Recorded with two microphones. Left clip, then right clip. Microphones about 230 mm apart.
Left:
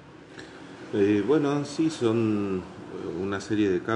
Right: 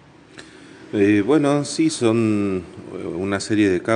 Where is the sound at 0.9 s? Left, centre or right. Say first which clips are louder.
Right 6 dB; right.